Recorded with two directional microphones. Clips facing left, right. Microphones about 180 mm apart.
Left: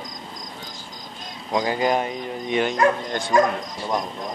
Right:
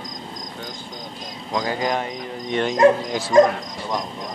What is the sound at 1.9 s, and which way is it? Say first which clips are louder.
Speech: left 2 dB; 5° left (ahead or behind).